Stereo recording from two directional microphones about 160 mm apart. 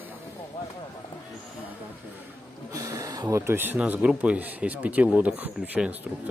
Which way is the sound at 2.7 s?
20° right (ahead or behind).